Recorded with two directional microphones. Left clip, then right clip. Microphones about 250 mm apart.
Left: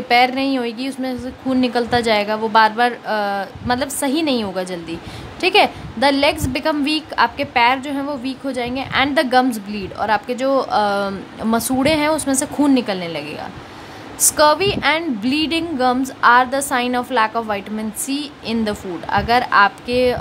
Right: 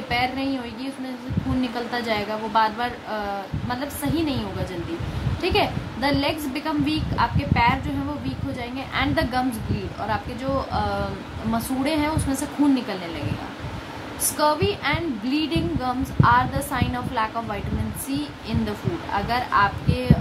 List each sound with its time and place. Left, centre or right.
0.1 s a woman's voice: left
5.4 s a woman's voice: left
14.3 s a woman's voice: left